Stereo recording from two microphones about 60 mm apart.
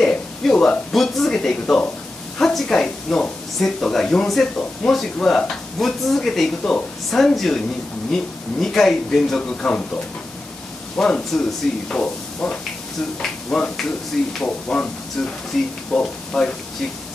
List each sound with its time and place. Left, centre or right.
0.0 s speech: centre
9.4 s speech: left
11.0 s speech: centre
15.2 s speech: centre